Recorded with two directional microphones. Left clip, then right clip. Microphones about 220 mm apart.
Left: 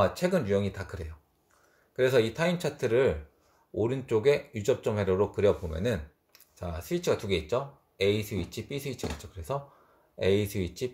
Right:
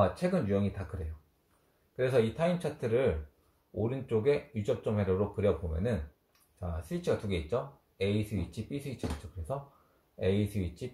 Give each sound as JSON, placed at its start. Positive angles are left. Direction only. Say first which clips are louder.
{"t": 0.0, "sound": "speech", "louder": "left 3 dB", "side_deg": 40}
{"t": 10.1, "sound": "speech", "louder": "left 5 dB", "side_deg": 50}